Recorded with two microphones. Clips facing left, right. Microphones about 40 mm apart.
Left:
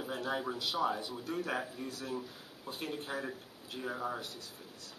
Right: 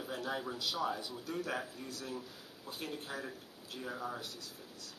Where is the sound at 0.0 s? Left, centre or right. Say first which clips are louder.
Left 3 dB; centre.